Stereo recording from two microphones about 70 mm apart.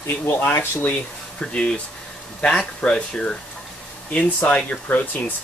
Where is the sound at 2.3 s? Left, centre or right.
Centre.